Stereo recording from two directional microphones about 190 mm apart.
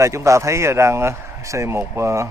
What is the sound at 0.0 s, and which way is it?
Speech, 15° right (ahead or behind).